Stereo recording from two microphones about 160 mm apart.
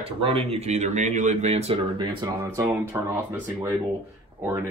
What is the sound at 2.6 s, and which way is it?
Speech, 15° right (ahead or behind).